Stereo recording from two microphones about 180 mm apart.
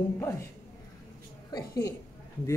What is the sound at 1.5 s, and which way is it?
Speech, 15° left (ahead or behind).